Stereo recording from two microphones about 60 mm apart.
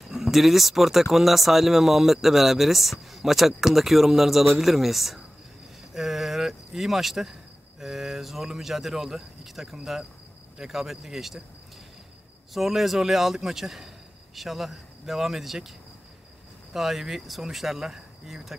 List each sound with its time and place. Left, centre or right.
0.1 s speech: centre
5.9 s a sound: centre
7.8 s speech: centre
12.5 s speech: centre
16.7 s speech: centre